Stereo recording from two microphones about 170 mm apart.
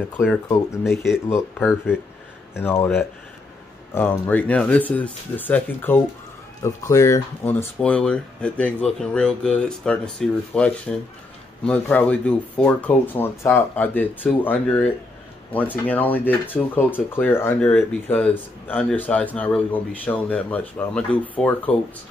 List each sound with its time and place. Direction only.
0.8 s speech: centre (ahead or behind)
1.3 s speech: 10° left (ahead or behind)
3.9 s speech: 15° left (ahead or behind)